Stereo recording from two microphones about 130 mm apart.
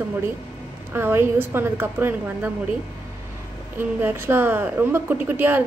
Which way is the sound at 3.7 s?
15° right (ahead or behind).